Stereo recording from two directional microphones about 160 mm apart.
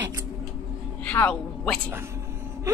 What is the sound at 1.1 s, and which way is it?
Speech, 10° left (ahead or behind).